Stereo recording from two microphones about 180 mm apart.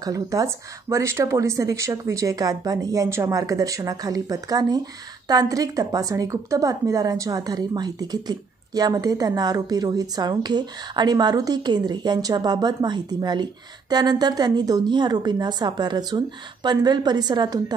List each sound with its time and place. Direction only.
0.0 s a woman's voice: 20° right (ahead or behind)